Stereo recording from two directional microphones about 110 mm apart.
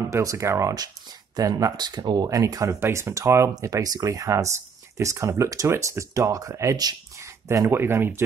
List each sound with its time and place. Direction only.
0.1 s speech: 30° right (ahead or behind)
2.2 s speech: 30° right (ahead or behind)